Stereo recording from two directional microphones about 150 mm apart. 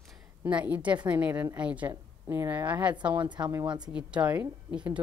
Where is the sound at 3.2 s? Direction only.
30° right (ahead or behind).